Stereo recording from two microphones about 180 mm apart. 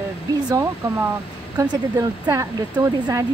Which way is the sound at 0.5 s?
20° right (ahead or behind).